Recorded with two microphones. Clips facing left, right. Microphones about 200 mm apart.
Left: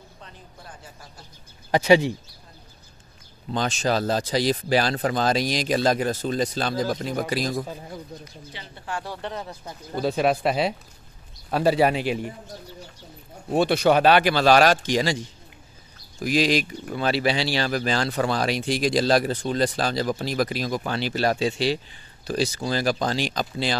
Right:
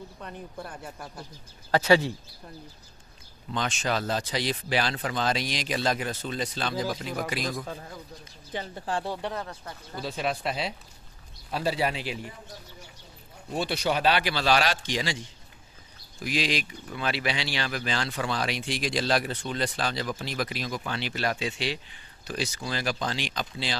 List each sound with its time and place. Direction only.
0.2 s speech: 60° right (ahead or behind)
1.7 s speech: 15° left (ahead or behind)
3.5 s speech: 35° left (ahead or behind)
7.6 s speech: 15° left (ahead or behind)
8.5 s speech: 35° right (ahead or behind)
9.0 s speech: 15° right (ahead or behind)
9.9 s speech: 60° left (ahead or behind)
13.5 s speech: 55° left (ahead or behind)
16.2 s speech: 45° left (ahead or behind)